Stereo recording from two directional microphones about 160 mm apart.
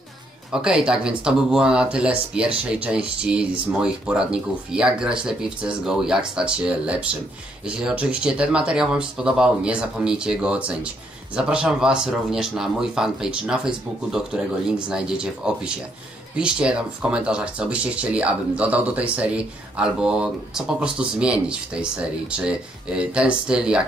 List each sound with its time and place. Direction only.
0.5 s speech: 5° right (ahead or behind)